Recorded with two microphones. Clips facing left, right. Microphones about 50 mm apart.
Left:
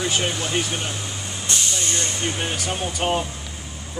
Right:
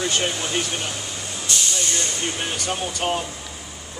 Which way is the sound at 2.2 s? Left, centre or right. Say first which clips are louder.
Left 1 dB; centre.